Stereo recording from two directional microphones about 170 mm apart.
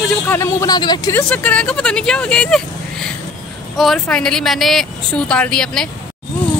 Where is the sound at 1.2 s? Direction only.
5° left (ahead or behind).